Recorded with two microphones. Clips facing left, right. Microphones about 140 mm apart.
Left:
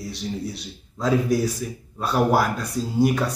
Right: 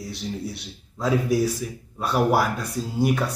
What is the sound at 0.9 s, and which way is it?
Speech, 5° right (ahead or behind).